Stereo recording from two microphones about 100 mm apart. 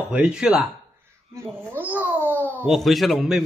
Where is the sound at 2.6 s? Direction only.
Centre (ahead or behind).